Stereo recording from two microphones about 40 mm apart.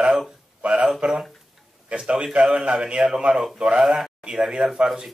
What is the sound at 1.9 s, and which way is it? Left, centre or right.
Speech, right.